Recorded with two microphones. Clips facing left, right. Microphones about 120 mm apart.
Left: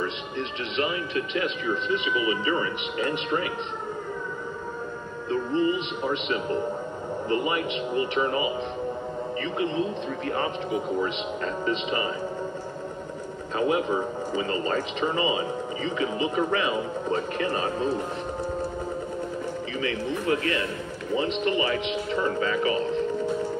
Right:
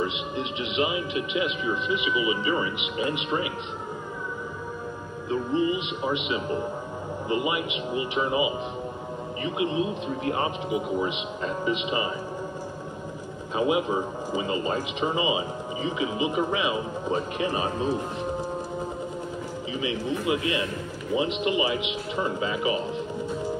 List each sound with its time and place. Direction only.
0.0 s a man's voice: 15° right (ahead or behind)
5.3 s a man's voice: 15° right (ahead or behind)
13.6 s speech: 15° right (ahead or behind)
19.8 s speech: 15° right (ahead or behind)